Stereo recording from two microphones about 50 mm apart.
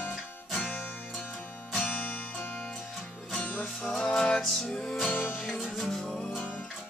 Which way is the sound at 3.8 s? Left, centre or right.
Centre.